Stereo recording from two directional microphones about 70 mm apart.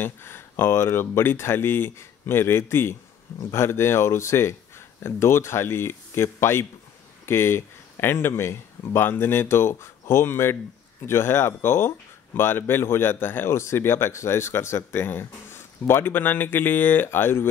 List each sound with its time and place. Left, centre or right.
0.0 s speech: left